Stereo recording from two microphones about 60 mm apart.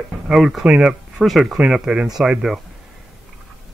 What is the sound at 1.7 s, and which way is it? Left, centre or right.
Speech, centre.